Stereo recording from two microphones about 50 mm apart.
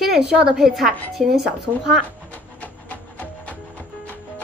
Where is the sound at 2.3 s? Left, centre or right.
Left.